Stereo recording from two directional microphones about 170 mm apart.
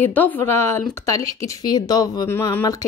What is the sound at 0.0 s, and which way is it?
A woman's voice, 10° left (ahead or behind).